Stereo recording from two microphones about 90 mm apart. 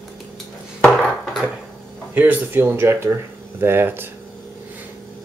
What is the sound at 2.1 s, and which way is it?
Speech, 20° right (ahead or behind).